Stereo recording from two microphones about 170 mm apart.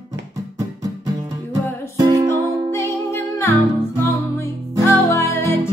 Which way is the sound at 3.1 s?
15° left (ahead or behind).